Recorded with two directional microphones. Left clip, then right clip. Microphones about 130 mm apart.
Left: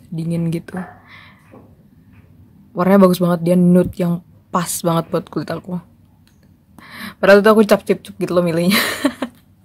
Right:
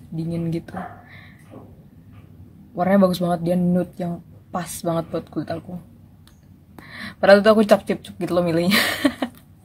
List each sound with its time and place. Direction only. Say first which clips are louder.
0.1 s speech: left 3 dB; 55° left (ahead or behind)
2.7 s speech: left 5 dB; 55° left (ahead or behind); by 5.6 s 90° left
6.8 s speech: left 3 dB; 45° left (ahead or behind)